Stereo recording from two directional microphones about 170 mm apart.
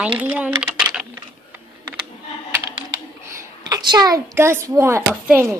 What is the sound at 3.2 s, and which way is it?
A child's voice, 25° right (ahead or behind).